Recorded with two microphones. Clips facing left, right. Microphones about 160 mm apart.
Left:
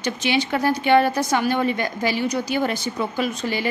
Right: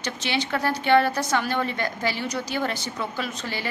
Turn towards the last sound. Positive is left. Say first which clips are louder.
# left 7 dB
turn(degrees=15)  # may be behind; listen again after turning